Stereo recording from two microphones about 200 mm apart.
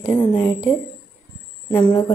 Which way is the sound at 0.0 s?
20° left (ahead or behind).